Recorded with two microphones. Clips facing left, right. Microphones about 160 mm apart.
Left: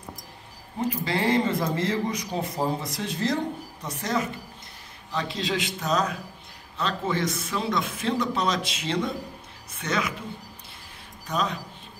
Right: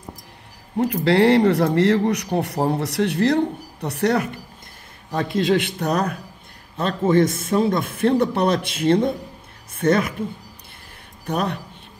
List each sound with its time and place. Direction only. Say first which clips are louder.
0.8 s a man's voice: right 9 dB; 70° right (ahead or behind)
5.1 s a man's voice: right 9 dB; 50° right (ahead or behind)
6.8 s a man's voice: right 9 dB; 50° right (ahead or behind)
11.2 s a man's voice: right 4 dB; 60° right (ahead or behind)